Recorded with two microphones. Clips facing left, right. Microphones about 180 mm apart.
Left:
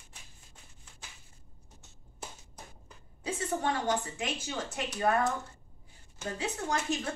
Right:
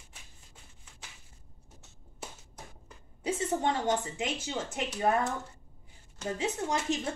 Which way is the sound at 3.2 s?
20° right (ahead or behind).